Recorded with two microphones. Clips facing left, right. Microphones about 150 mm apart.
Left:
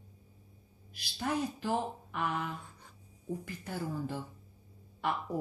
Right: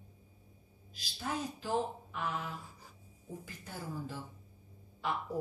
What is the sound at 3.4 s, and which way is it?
Speech, 65° left (ahead or behind).